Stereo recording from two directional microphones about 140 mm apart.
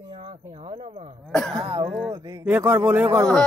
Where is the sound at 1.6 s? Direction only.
40° right (ahead or behind).